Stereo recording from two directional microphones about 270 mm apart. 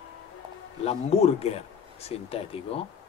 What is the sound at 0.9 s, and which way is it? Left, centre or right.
Speech, left.